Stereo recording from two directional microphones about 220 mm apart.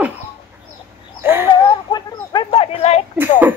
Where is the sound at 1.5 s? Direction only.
20° left (ahead or behind).